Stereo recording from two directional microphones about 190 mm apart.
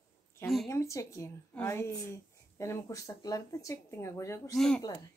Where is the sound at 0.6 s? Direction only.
15° left (ahead or behind).